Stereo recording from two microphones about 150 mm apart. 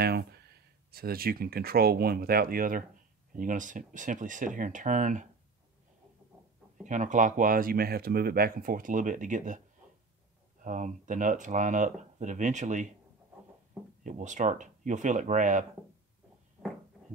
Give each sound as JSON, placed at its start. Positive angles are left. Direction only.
{"t": 0.0, "sound": "speech", "side_deg": -90}
{"t": 6.8, "sound": "speech", "side_deg": -55}
{"t": 10.6, "sound": "speech", "side_deg": -55}
{"t": 14.0, "sound": "speech", "side_deg": -55}